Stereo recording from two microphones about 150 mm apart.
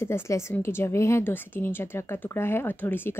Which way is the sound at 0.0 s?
20° left (ahead or behind).